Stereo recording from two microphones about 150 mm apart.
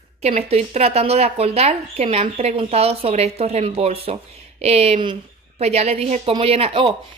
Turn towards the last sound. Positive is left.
turn(degrees=-40)  # may be behind; listen again after turning